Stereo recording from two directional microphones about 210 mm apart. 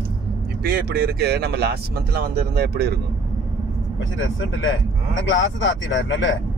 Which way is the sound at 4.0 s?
65° left (ahead or behind).